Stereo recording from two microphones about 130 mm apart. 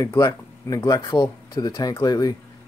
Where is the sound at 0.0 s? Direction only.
25° left (ahead or behind).